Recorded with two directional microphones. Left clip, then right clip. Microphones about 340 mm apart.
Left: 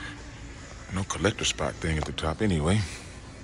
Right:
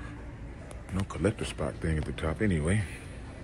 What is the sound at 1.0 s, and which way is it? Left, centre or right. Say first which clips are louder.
Speech: left 5 dB; centre.